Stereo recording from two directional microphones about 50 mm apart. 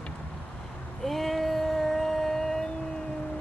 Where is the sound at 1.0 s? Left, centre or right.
Centre.